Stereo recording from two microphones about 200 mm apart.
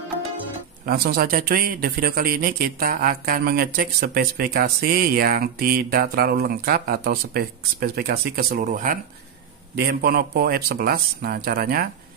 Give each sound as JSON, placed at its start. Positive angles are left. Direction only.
{"t": 0.8, "sound": "a man's voice", "side_deg": -50}